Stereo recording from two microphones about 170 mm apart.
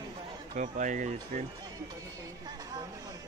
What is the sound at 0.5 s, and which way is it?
Speech, 45° right (ahead or behind).